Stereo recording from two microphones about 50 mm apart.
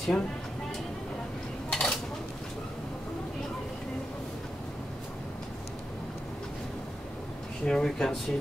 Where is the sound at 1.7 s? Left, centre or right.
Centre.